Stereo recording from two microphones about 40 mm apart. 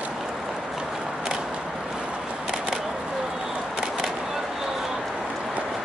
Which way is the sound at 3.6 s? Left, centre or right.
Centre.